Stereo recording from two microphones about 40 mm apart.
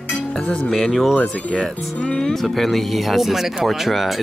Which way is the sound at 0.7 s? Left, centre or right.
Centre.